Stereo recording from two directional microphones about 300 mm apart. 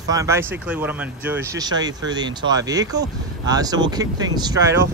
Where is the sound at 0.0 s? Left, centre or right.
Centre.